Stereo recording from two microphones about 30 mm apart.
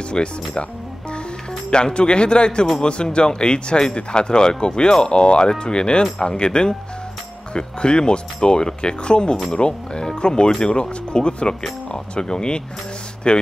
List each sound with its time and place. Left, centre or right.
0.1 s speech: left
1.7 s speech: left